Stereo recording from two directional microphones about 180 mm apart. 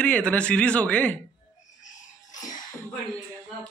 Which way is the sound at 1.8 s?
45° left (ahead or behind).